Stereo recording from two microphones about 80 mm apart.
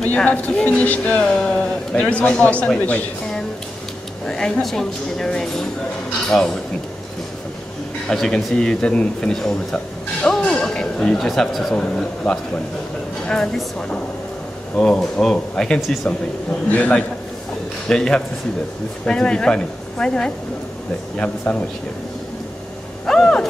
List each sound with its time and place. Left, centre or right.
0.0 s a man's voice: centre
8.1 s a man's voice: centre
23.0 s a sound: centre